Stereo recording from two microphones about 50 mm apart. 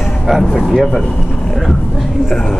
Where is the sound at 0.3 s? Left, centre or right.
Centre.